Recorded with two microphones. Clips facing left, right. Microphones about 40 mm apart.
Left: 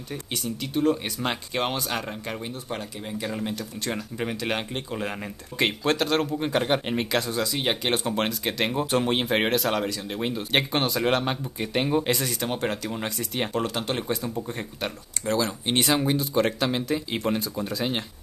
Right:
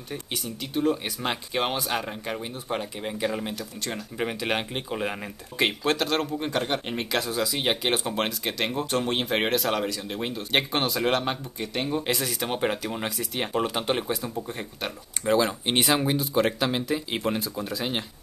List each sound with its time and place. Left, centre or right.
0.1 s speech: centre
3.5 s speech: centre
4.2 s speech: centre
5.6 s speech: centre
11.7 s speech: centre
12.0 s speech: centre
14.0 s speech: centre
15.2 s speech: right; by 18.0 s centre